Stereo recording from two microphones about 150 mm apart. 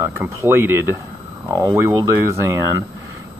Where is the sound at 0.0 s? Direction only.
15° right (ahead or behind).